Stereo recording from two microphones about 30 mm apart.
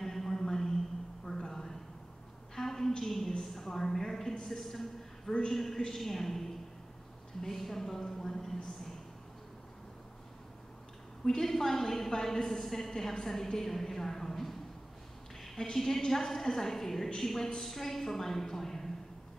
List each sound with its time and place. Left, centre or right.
0.0 s a sound: centre
3.0 s a woman's voice: centre
11.2 s a sound: centre
11.5 s a woman's voice: centre
12.4 s a woman's voice: centre
15.5 s a woman's voice: centre